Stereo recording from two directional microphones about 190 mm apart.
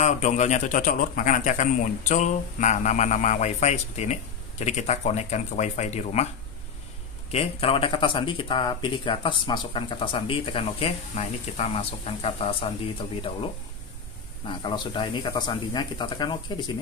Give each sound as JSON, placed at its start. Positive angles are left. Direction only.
{"t": 0.0, "sound": "a man's voice", "side_deg": 40}
{"t": 7.2, "sound": "speech", "side_deg": 30}
{"t": 14.5, "sound": "speech", "side_deg": 25}